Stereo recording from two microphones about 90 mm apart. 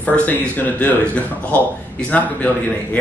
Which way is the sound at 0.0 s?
20° left (ahead or behind).